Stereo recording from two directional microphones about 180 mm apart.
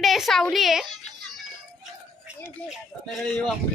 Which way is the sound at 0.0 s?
Centre (ahead or behind).